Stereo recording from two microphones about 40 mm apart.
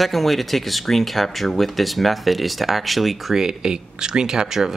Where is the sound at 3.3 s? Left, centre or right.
Centre.